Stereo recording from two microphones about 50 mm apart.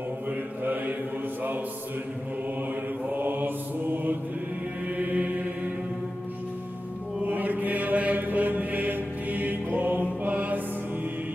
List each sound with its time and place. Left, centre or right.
3.1 s mantra: right
4.9 s chant: right
7.2 s mantra: right